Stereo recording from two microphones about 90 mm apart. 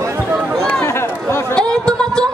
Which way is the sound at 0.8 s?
25° left (ahead or behind).